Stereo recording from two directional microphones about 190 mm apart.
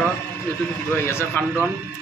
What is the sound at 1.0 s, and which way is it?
Speech, 15° left (ahead or behind).